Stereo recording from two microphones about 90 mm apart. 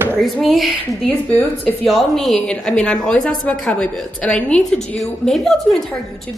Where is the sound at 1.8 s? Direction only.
Centre (ahead or behind).